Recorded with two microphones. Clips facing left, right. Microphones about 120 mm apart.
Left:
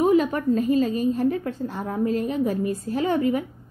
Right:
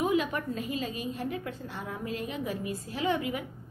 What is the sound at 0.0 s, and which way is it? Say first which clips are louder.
A woman's voice: left 9 dB; 40° left (ahead or behind).